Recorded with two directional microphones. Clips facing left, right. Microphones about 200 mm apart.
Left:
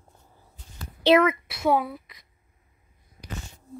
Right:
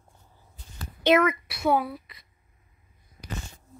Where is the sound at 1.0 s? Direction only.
30° left (ahead or behind).